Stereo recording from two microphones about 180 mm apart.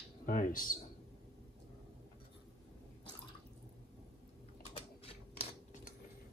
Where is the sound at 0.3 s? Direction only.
50° left (ahead or behind).